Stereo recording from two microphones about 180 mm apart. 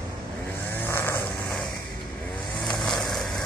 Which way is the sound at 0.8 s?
10° left (ahead or behind).